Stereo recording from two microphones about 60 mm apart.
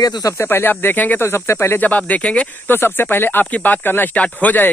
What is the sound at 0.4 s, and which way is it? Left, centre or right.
Speech, left.